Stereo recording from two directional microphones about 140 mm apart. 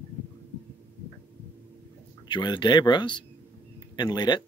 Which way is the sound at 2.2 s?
35° left (ahead or behind).